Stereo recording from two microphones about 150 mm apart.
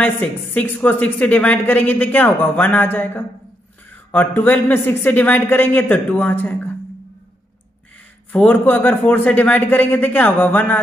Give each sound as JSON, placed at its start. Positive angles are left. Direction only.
{"t": 0.0, "sound": "speech", "side_deg": 10}
{"t": 8.3, "sound": "speech", "side_deg": 10}